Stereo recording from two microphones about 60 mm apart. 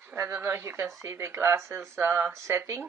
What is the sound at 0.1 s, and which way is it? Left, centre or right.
Speech, right.